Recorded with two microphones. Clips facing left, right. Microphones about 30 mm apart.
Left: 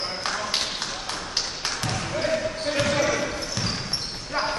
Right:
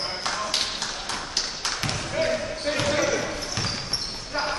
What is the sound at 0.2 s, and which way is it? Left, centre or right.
Tap, centre.